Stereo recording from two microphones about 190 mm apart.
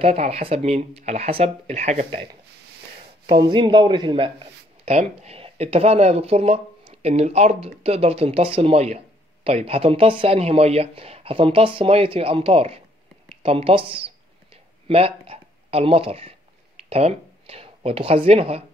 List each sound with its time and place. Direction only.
0.0 s speech: 35° right (ahead or behind)
3.3 s a man's voice: 25° right (ahead or behind)
13.3 s a sound: 30° right (ahead or behind)
16.9 s speech: 30° right (ahead or behind)